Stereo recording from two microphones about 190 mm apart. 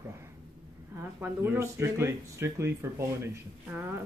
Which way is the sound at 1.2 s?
10° right (ahead or behind).